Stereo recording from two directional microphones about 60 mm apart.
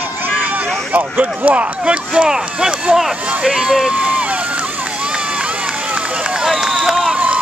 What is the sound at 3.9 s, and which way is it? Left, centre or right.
Run, right.